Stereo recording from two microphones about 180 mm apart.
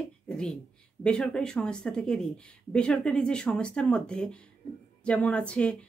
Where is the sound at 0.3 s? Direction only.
5° left (ahead or behind).